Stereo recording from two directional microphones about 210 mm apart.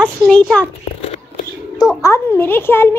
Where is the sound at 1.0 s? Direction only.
30° left (ahead or behind).